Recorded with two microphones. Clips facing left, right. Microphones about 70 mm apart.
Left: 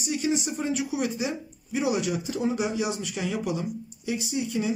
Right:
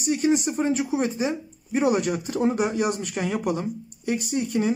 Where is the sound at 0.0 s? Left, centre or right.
Right.